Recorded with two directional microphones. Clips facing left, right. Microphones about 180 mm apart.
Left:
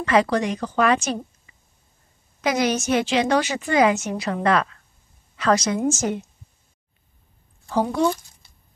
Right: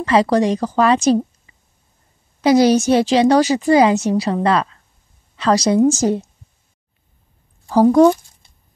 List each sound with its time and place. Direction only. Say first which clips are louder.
0.0 s a woman's voice: right 5 dB; 35° right (ahead or behind)
2.4 s a woman's voice: right 9 dB; 35° right (ahead or behind)
7.7 s a woman's voice: right 10 dB; 40° right (ahead or behind)